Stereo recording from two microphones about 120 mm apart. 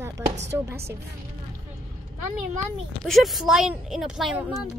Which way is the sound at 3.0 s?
Centre (ahead or behind).